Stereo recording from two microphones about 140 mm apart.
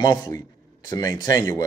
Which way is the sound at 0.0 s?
25° left (ahead or behind).